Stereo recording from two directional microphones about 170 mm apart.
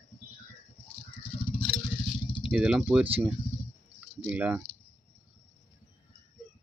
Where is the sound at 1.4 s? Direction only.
35° left (ahead or behind).